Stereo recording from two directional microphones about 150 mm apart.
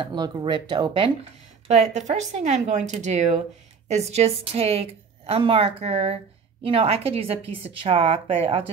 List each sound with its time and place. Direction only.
0.0 s a woman's voice: 30° right (ahead or behind)
1.7 s a woman's voice: 50° right (ahead or behind)